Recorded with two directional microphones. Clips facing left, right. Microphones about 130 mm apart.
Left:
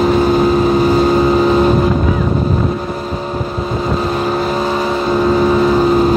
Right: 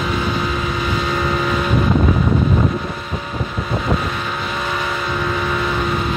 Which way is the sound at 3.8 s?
35° left (ahead or behind).